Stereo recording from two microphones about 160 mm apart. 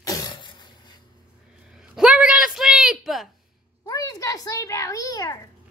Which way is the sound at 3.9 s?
25° left (ahead or behind).